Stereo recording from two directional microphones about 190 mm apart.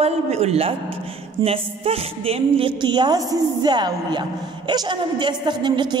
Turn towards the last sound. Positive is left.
turn(degrees=-25)  # may be behind; listen again after turning